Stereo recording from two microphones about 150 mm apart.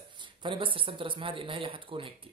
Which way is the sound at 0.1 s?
30° right (ahead or behind).